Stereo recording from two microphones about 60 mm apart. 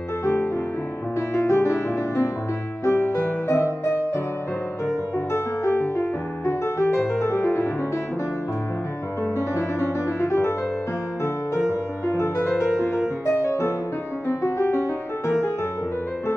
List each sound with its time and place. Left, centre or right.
0.2 s music: left
4.8 s music: left
9.6 s music: left
12.1 s music: left